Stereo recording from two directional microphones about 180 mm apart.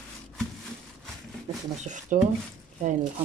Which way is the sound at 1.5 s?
30° right (ahead or behind).